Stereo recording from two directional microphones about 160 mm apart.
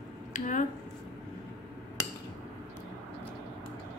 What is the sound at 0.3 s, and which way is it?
Speech, 50° left (ahead or behind).